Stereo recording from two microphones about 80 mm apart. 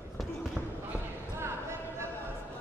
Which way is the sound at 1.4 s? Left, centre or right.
Right.